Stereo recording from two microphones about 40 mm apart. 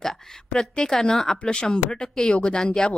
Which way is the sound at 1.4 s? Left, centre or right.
Left.